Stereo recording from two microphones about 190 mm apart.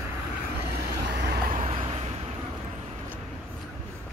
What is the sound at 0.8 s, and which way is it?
Vehicle, 55° right (ahead or behind).